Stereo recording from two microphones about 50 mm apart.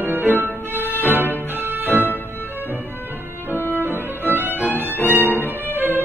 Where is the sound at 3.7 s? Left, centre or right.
Right.